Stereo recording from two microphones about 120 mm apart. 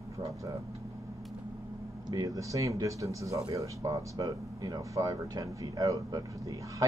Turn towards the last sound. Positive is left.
turn(degrees=-30)  # may be behind; listen again after turning